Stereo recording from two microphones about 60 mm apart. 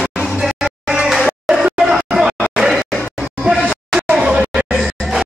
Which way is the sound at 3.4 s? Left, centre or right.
Centre.